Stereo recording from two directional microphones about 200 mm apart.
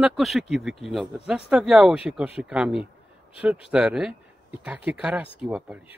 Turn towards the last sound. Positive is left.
turn(degrees=-5)  # may be behind; listen again after turning